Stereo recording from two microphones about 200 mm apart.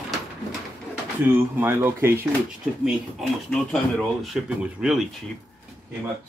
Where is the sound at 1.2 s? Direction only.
10° right (ahead or behind).